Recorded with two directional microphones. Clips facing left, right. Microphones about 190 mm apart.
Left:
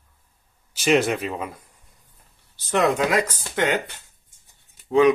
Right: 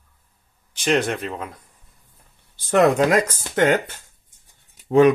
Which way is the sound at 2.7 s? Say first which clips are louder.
Right 4 dB; 45° right (ahead or behind).